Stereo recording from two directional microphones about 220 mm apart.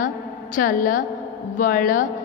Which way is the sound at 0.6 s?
35° left (ahead or behind).